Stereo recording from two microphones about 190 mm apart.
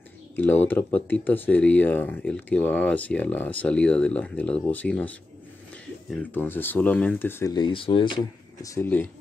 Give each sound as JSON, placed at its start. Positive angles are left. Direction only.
{"t": 0.4, "sound": "speech", "side_deg": 10}
{"t": 7.5, "sound": "speech", "side_deg": 25}